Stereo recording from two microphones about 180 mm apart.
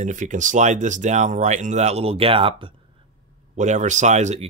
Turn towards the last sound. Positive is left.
turn(degrees=-40)  # may be behind; listen again after turning